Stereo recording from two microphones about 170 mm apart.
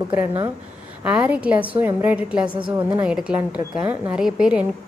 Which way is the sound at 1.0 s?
10° right (ahead or behind).